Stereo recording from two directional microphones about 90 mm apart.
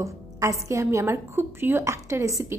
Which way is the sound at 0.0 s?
35° right (ahead or behind).